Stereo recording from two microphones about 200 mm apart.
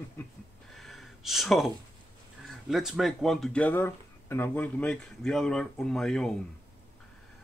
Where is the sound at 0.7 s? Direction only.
Centre (ahead or behind).